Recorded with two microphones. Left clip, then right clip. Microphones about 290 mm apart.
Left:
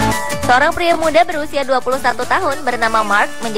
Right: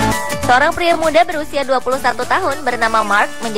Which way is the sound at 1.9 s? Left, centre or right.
Right.